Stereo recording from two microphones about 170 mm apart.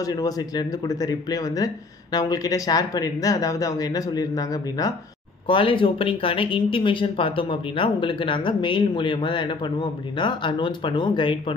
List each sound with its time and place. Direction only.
0.0 s speech: 20° left (ahead or behind)